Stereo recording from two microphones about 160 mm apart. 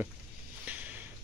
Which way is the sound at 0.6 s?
10° right (ahead or behind).